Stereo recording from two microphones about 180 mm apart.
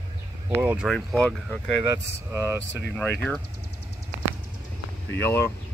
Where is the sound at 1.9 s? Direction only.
15° right (ahead or behind).